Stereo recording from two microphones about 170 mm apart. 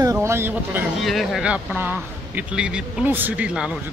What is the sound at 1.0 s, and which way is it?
Speech, centre (ahead or behind).